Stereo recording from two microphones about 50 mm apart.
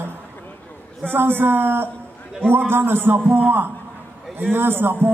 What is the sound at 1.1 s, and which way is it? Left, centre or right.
Speech, right.